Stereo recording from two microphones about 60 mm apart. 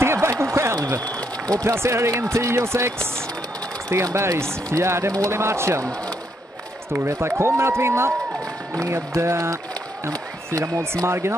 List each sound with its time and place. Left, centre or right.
0.0 s a sound: right
0.7 s applause: right
1.5 s a man's voice: right
7.1 s a man's voice: right
8.7 s a man's voice: right